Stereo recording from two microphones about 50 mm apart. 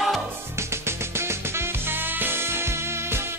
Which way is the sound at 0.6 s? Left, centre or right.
Right.